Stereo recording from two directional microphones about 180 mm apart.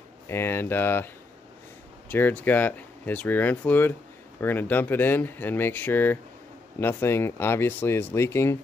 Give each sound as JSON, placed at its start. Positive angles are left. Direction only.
{"t": 0.3, "sound": "speech", "side_deg": 15}